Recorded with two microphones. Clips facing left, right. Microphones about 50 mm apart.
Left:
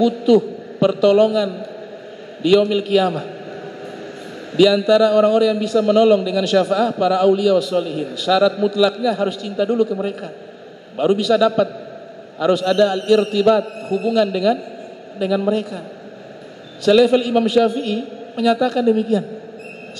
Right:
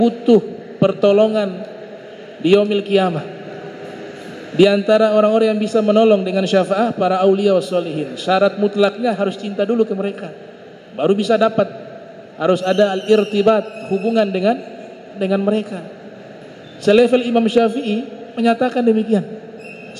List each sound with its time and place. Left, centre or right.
0.0 s a man's voice: right
4.6 s a man's voice: right
11.0 s a man's voice: right
16.8 s a man's voice: right